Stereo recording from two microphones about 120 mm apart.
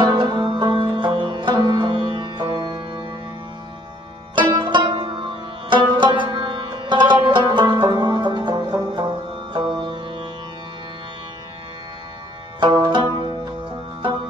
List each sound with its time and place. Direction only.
0.0 s music: 40° right (ahead or behind)
4.4 s music: 40° right (ahead or behind)
7.2 s banjo: 40° right (ahead or behind)
12.5 s music: 35° right (ahead or behind)